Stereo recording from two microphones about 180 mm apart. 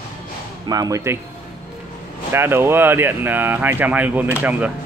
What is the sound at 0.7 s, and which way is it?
Speech, 20° right (ahead or behind).